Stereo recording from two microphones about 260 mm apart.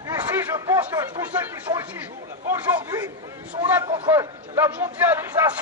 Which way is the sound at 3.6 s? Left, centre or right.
Centre.